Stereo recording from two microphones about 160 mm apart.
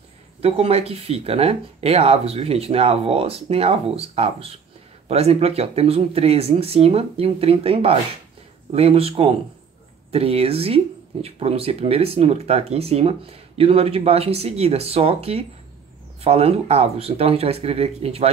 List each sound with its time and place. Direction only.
0.4 s speech: 40° right (ahead or behind)